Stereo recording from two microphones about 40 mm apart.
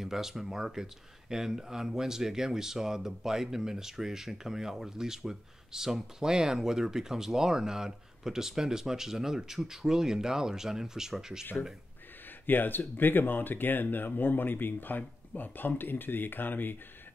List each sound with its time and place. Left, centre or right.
0.0 s speech: centre
12.4 s speech: left